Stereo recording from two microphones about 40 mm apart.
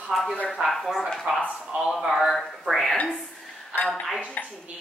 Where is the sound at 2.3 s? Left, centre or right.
Centre.